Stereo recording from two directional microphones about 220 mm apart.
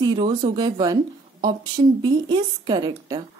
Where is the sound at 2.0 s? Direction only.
20° right (ahead or behind).